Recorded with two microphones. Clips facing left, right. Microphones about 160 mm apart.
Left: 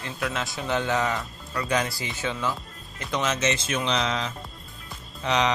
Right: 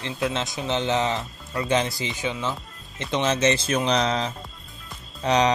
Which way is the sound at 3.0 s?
25° right (ahead or behind).